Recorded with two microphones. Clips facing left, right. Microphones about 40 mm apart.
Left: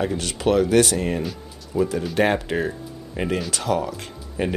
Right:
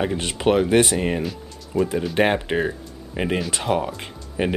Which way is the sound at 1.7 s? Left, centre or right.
Right.